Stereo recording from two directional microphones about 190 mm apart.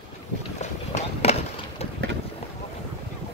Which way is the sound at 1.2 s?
35° left (ahead or behind).